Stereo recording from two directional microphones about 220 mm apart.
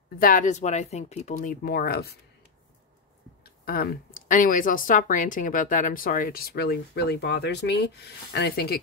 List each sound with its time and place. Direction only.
0.2 s speech: 35° left (ahead or behind)
3.4 s speech: 45° left (ahead or behind)